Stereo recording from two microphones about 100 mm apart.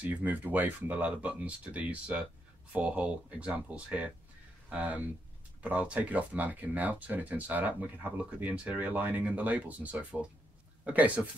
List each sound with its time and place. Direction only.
0.0 s speech: 15° right (ahead or behind)